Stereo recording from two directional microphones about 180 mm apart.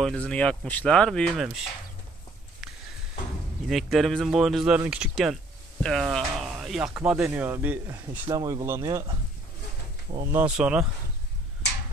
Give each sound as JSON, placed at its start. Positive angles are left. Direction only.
{"t": 0.0, "sound": "speech", "side_deg": 5}
{"t": 2.6, "sound": "a sound", "side_deg": -5}
{"t": 3.6, "sound": "speech", "side_deg": 0}
{"t": 10.3, "sound": "speech", "side_deg": -5}